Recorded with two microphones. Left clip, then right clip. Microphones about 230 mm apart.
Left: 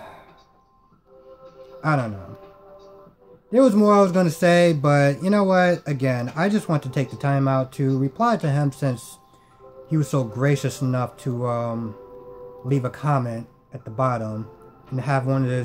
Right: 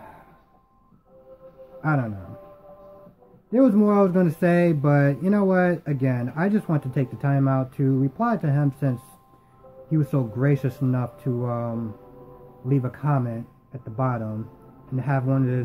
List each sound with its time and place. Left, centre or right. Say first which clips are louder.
1.8 s speech: left 3 dB; centre
3.4 s speech: left 3 dB; centre